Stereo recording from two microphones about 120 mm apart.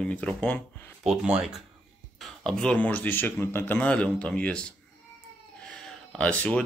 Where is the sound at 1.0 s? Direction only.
5° right (ahead or behind).